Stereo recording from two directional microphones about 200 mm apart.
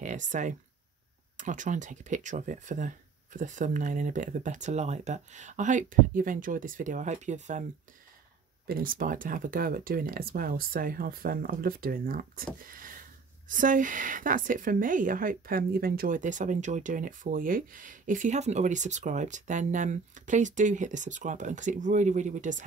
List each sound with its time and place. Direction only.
0.0 s a woman's voice: 40° right (ahead or behind)
8.6 s speech: 45° right (ahead or behind)
12.6 s a sound: 45° right (ahead or behind)
13.5 s a woman's voice: 40° right (ahead or behind)